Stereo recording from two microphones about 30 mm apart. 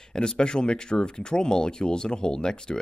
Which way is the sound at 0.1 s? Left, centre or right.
Left.